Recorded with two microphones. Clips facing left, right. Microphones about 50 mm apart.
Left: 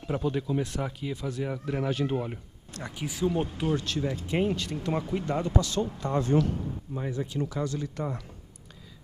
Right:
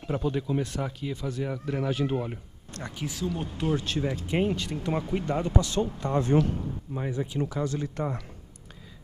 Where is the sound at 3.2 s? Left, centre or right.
Left.